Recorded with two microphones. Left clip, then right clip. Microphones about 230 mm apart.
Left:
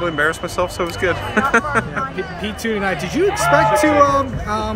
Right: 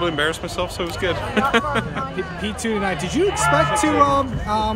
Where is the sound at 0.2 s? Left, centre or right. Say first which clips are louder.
Left 4 dB; centre.